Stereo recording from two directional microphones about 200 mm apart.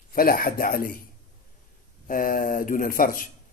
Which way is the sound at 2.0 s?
45° left (ahead or behind).